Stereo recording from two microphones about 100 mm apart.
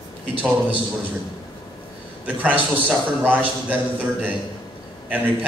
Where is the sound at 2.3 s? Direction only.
15° right (ahead or behind).